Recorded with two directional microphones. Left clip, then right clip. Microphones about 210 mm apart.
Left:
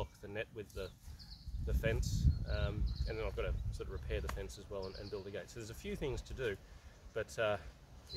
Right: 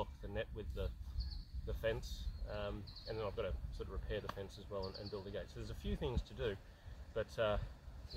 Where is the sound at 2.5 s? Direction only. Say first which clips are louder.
Even; 15° left (ahead or behind).